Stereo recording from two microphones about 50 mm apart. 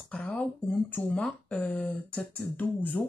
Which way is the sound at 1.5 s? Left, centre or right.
Left.